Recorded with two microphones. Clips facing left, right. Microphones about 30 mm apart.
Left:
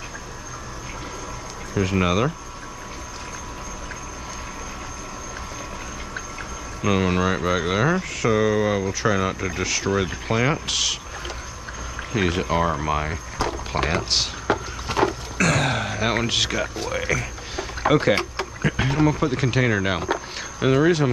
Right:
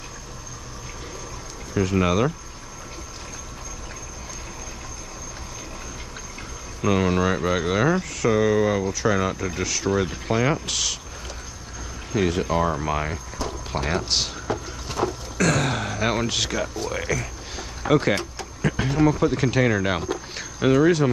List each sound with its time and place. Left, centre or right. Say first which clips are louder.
1.8 s speech: even; centre
6.8 s speech: even; centre
12.1 s speech: even; left
13.4 s a sound: left 5 dB; left
14.1 s speech: even; centre
14.5 s vehicle: left 6 dB; left
14.9 s a sound: left 4 dB; left
15.3 s speech: right 1 dB; centre
18.6 s a sound: left 1 dB; centre
18.9 s speech: right 3 dB; centre